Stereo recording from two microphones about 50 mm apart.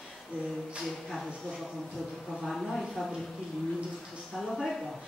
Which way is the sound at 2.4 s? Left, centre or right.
Centre.